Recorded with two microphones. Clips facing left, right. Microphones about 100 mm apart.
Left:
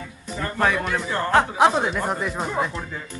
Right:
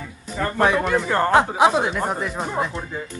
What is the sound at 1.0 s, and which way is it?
Speech, 45° right (ahead or behind).